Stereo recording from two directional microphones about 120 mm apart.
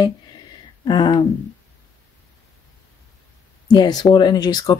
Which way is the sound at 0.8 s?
40° left (ahead or behind).